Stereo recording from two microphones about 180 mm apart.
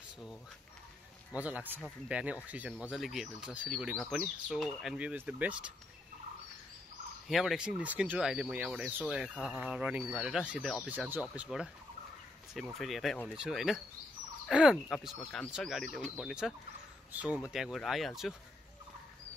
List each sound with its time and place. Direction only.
1.3 s speech: 10° right (ahead or behind)
7.2 s speech: centre (ahead or behind)